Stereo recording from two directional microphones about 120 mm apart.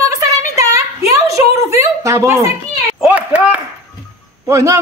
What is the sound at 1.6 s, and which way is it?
Speech, 25° right (ahead or behind).